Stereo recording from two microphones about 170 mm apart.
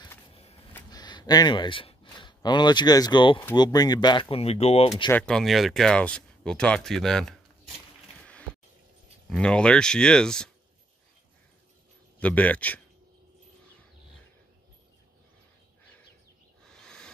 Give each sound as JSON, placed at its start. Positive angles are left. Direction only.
{"t": 0.3, "sound": "a sound", "side_deg": 35}
{"t": 0.9, "sound": "speech", "side_deg": 25}
{"t": 5.1, "sound": "speech", "side_deg": 5}
{"t": 9.3, "sound": "speech", "side_deg": 5}
{"t": 12.2, "sound": "a man's voice", "side_deg": 10}
{"t": 16.6, "sound": "owl", "side_deg": 5}